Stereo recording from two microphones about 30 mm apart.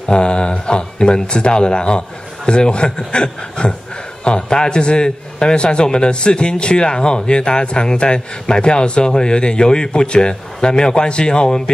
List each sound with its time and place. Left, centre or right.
0.1 s a man's voice: left